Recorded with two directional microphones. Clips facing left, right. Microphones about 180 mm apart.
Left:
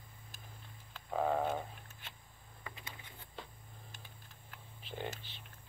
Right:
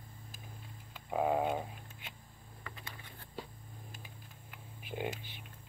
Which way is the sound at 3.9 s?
10° right (ahead or behind).